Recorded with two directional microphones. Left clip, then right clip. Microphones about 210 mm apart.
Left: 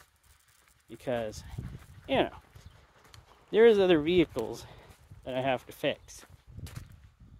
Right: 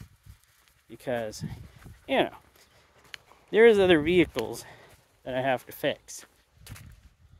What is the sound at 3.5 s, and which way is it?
Speech, 15° right (ahead or behind).